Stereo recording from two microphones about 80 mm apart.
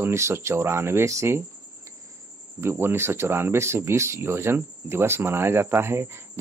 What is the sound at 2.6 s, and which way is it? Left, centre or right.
Speech, right.